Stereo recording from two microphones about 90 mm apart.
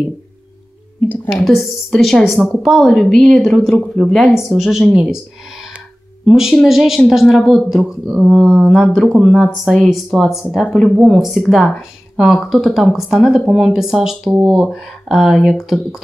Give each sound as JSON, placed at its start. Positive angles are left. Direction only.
{"t": 1.0, "sound": "speech", "side_deg": 20}
{"t": 1.3, "sound": "speech", "side_deg": -5}
{"t": 6.2, "sound": "a woman's voice", "side_deg": -5}
{"t": 10.7, "sound": "speech", "side_deg": 10}
{"t": 11.0, "sound": "speech", "side_deg": 0}